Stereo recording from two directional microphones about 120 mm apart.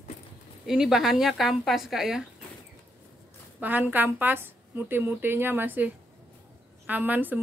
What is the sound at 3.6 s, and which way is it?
A woman's voice, 15° right (ahead or behind).